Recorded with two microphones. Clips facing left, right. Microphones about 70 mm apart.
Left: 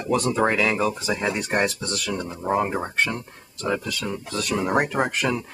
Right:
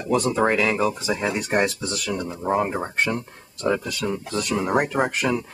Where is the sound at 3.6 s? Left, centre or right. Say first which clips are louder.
Right 3 dB; centre.